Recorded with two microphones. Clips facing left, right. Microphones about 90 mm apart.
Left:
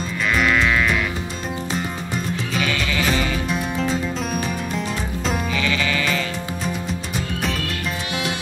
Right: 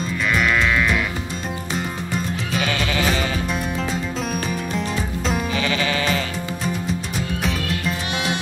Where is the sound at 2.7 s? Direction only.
35° right (ahead or behind).